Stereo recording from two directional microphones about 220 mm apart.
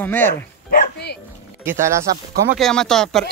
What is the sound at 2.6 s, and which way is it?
Speech, 5° left (ahead or behind).